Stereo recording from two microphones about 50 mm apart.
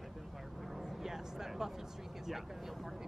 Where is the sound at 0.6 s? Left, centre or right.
Centre.